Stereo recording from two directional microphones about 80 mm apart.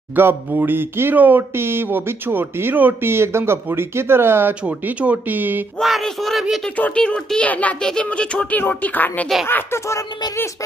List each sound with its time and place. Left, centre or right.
0.1 s speech: right
5.8 s a sound: centre
6.8 s speech: centre; by 9.9 s left